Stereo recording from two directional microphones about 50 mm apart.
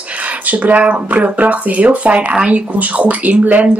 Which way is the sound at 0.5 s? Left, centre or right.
Right.